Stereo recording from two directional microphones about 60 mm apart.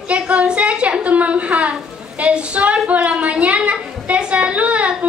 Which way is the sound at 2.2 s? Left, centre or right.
Centre.